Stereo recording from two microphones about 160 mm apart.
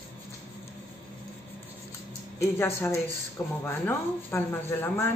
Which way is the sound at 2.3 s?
15° left (ahead or behind).